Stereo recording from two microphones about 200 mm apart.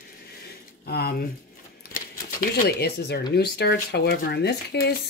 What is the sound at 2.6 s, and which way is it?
Speech, 50° left (ahead or behind).